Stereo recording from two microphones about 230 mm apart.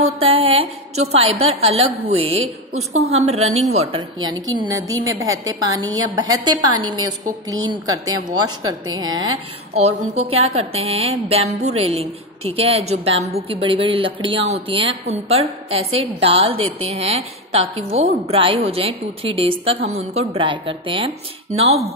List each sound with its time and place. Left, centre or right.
0.0 s a woman's voice: right
2.4 s a woman's voice: right
3.1 s a woman's voice: right